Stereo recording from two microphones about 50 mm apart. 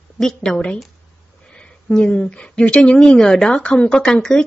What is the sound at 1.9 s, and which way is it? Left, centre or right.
Speech, centre.